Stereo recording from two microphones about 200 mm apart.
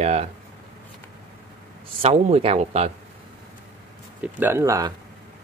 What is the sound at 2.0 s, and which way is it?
Speech, 30° right (ahead or behind).